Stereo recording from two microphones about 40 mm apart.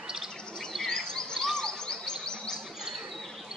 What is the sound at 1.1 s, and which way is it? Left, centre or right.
Music, centre.